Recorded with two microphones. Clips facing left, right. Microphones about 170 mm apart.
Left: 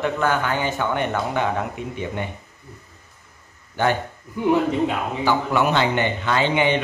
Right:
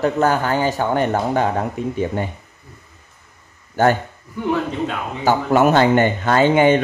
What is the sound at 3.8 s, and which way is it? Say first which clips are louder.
Speech: right 5 dB; 45° right (ahead or behind).